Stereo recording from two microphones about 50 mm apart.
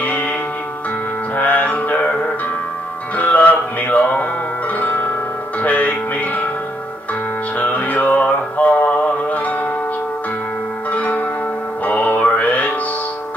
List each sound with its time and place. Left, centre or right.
1.3 s music: left
5.6 s music: left
7.5 s music: left
10.9 s music: left